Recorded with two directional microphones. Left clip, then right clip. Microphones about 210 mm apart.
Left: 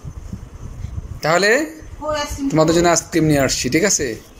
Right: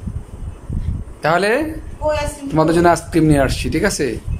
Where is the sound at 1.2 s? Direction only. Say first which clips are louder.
Even; 5° right (ahead or behind).